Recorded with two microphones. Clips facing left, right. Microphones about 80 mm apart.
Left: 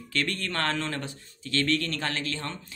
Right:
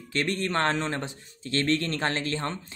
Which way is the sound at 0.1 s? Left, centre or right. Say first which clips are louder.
Right 3 dB; right.